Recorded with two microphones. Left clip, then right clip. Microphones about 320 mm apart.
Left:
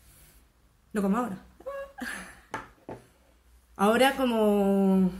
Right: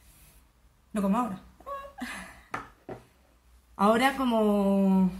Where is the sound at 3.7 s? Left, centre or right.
Centre.